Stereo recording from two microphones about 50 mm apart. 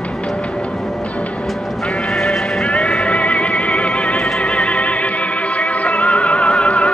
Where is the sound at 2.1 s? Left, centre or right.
Centre.